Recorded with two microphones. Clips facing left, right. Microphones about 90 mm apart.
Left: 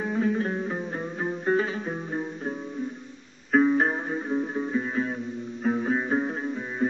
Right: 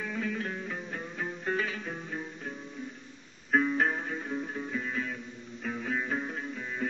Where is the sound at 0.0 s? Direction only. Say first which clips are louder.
Left 8 dB; 30° left (ahead or behind).